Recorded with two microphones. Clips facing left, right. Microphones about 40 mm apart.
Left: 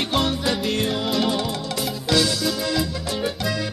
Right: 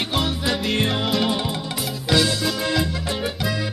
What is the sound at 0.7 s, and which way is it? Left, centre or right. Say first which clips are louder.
Music: right 1 dB; right.